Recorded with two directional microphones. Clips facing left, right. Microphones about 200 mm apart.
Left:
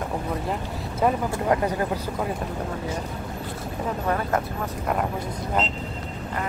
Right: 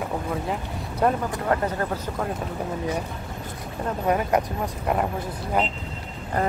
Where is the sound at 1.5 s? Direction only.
15° left (ahead or behind).